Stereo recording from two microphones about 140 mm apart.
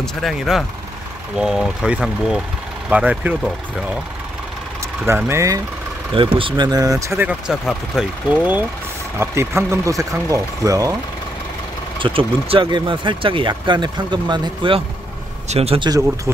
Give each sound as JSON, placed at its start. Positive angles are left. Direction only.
{"t": 0.0, "sound": "speech", "side_deg": 0}
{"t": 5.0, "sound": "speech", "side_deg": -20}
{"t": 6.1, "sound": "speech", "side_deg": -35}
{"t": 7.2, "sound": "speech", "side_deg": -5}
{"t": 12.0, "sound": "speech", "side_deg": -40}
{"t": 15.4, "sound": "speech", "side_deg": -50}